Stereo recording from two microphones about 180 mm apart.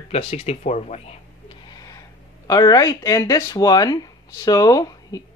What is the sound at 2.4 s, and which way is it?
Speech, 20° left (ahead or behind).